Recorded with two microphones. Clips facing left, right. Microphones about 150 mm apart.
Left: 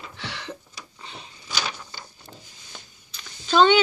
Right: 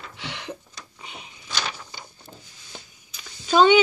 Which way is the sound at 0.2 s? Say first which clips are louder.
Right 1 dB; 15° right (ahead or behind).